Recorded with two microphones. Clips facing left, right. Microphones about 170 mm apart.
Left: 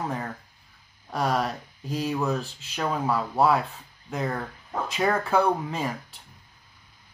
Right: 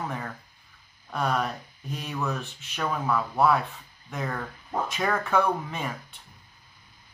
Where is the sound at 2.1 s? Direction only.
20° left (ahead or behind).